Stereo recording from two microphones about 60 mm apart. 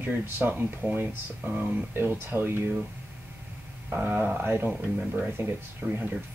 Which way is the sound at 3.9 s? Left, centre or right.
Right.